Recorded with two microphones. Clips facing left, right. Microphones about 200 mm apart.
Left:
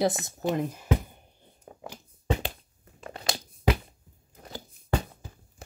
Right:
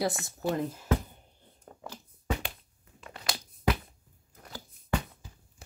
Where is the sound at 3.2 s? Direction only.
25° left (ahead or behind).